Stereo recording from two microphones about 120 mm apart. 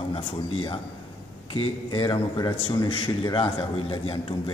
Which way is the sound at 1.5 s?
45° left (ahead or behind).